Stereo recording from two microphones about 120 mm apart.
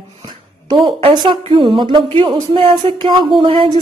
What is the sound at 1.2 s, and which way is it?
Speech, 45° right (ahead or behind).